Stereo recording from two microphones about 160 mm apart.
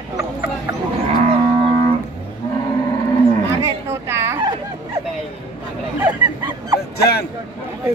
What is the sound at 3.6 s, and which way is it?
Chatter, 15° right (ahead or behind).